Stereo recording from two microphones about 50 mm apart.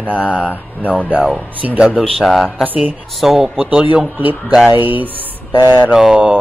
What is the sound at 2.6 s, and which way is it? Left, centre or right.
Speech, right.